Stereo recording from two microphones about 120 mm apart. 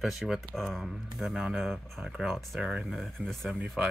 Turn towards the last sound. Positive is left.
turn(degrees=-5)  # may be behind; listen again after turning